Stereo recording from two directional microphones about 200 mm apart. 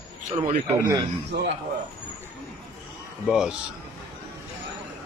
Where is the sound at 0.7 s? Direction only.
15° right (ahead or behind).